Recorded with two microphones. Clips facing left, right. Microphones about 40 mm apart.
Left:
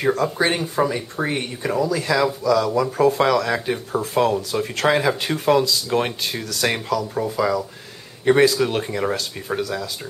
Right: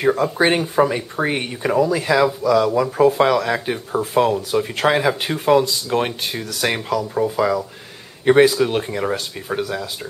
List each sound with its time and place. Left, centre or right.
0.0 s speech: centre